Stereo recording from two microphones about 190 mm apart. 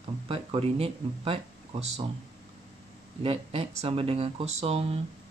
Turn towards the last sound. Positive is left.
turn(degrees=-35)  # may be behind; listen again after turning